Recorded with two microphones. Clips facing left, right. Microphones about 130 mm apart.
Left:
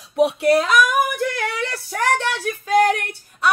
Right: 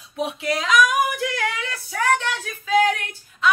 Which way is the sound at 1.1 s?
50° left (ahead or behind).